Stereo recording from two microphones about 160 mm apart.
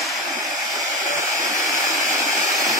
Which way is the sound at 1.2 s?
50° right (ahead or behind).